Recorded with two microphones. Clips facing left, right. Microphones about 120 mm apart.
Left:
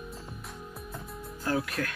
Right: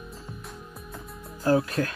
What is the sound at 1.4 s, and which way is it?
Speech, 30° right (ahead or behind).